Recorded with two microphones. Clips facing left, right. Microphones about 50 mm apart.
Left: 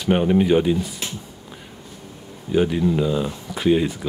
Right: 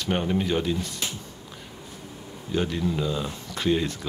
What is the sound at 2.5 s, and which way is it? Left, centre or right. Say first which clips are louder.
Speech: left 7 dB; centre.